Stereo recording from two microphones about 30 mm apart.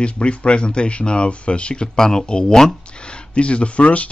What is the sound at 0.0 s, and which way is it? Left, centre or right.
Speech, left.